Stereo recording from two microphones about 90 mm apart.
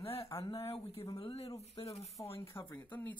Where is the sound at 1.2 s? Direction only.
90° left.